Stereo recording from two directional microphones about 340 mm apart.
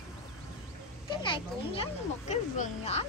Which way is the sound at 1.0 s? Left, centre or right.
Centre.